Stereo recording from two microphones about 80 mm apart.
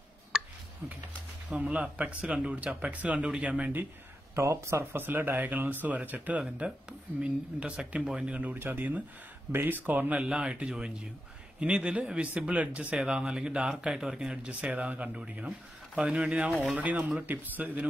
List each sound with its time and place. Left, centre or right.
0.3 s a sound: centre
1.5 s speech: centre
4.4 s speech: right; by 17.2 s centre
17.3 s speech: right